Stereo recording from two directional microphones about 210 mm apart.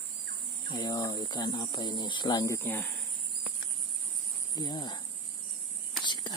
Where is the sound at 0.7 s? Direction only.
20° left (ahead or behind).